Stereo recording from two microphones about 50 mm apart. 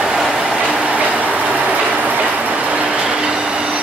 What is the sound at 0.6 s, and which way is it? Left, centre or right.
Train, right.